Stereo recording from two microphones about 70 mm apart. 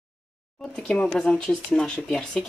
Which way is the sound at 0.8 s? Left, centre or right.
Centre.